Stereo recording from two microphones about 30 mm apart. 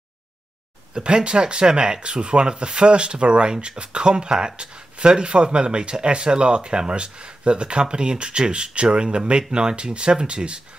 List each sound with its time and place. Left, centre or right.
0.9 s speech: right